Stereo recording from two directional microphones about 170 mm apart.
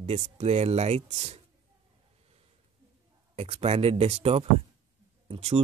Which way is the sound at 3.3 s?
35° right (ahead or behind).